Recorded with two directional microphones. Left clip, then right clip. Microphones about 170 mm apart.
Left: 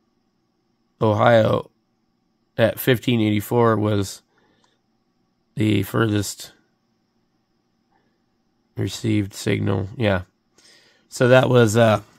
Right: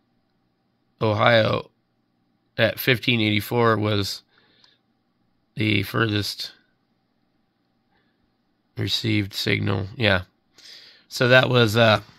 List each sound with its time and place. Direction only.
0.9 s speech: 30° left (ahead or behind)
8.7 s speech: 20° left (ahead or behind)